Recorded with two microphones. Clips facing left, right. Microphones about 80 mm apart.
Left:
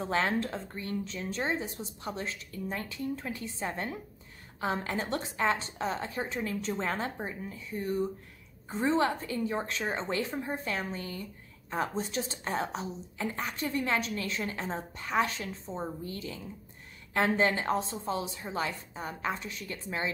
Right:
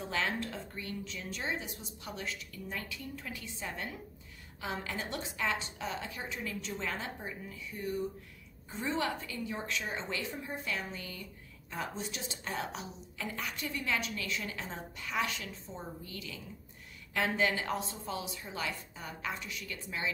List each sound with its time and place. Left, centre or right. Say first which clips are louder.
0.0 s a woman's voice: left 5 dB; left